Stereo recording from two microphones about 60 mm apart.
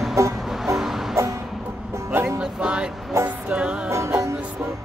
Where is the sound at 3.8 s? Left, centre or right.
Right.